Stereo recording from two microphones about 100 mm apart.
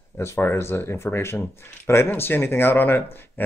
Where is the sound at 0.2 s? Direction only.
25° left (ahead or behind).